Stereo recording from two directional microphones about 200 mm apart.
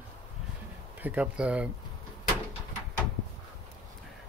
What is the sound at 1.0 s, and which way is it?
Speech, 5° right (ahead or behind).